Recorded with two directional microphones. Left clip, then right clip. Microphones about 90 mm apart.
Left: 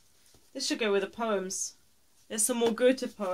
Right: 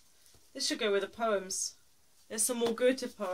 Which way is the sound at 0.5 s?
35° left (ahead or behind).